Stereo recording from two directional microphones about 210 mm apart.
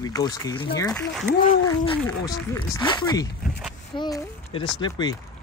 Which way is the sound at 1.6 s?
20° left (ahead or behind).